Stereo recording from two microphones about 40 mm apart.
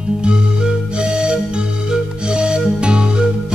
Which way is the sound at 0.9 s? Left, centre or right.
Right.